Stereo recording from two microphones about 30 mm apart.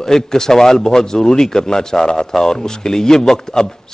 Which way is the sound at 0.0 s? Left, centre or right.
Centre.